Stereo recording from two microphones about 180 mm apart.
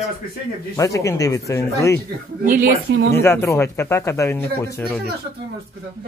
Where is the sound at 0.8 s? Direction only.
15° left (ahead or behind).